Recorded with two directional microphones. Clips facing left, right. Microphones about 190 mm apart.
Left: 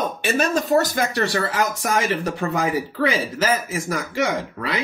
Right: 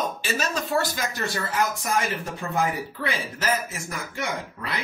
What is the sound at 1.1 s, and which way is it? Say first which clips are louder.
Speech: left 3 dB; 85° left.